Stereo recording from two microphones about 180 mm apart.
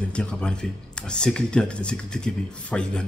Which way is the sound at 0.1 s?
5° left (ahead or behind).